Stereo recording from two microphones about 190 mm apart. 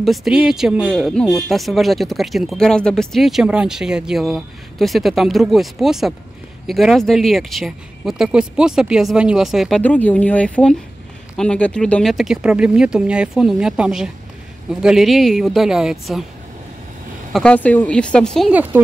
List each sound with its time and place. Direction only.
0.0 s speech: centre (ahead or behind)
17.3 s speech: 5° left (ahead or behind)
18.5 s speech: 10° right (ahead or behind)